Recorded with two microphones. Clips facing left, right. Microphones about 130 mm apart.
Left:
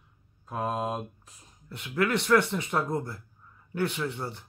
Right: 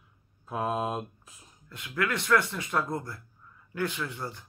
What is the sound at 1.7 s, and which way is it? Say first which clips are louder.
Speech: left 4 dB; 25° left (ahead or behind).